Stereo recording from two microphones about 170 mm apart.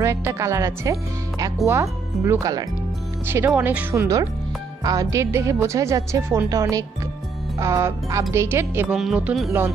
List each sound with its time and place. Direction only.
0.0 s speech: 15° right (ahead or behind)